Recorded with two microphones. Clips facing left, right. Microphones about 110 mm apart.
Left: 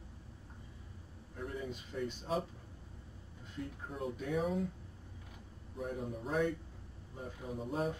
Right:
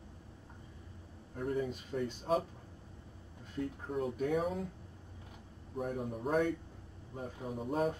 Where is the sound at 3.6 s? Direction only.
45° right (ahead or behind).